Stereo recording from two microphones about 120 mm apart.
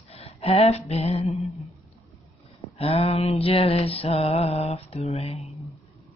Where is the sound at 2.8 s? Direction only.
55° left (ahead or behind).